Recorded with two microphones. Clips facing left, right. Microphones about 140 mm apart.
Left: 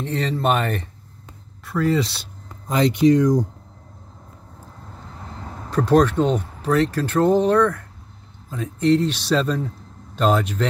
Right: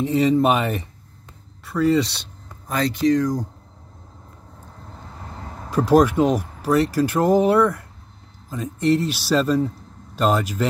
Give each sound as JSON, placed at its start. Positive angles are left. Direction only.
{"t": 0.0, "sound": "speech", "side_deg": -5}
{"t": 2.7, "sound": "speech", "side_deg": 20}
{"t": 5.7, "sound": "speech", "side_deg": -10}